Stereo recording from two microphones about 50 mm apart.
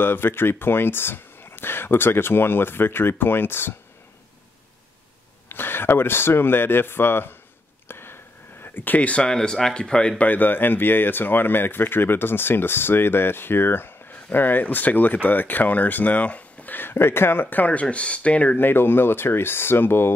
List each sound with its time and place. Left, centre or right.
0.0 s speech: left
5.5 s speech: left
7.9 s a sound: left
8.7 s speech: left; by 10.1 s centre
10.1 s speech: left
16.9 s speech: left
18.6 s speech: left